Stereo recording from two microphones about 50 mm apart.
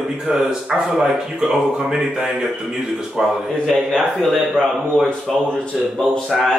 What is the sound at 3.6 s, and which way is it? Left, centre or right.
A man's voice, centre.